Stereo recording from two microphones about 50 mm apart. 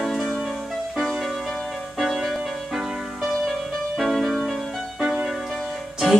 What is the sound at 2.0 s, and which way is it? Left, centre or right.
Music, centre.